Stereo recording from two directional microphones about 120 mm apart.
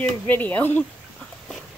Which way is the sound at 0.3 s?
15° left (ahead or behind).